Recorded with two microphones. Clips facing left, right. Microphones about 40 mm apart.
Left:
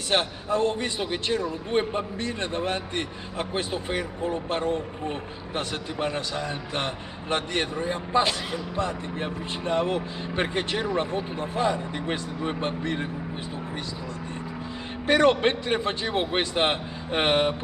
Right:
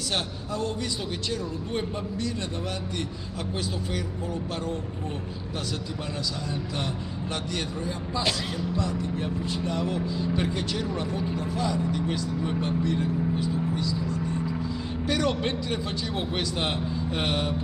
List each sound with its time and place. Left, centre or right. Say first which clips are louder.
0.1 s speech: left 8 dB; left
15.0 s speech: left 7 dB; left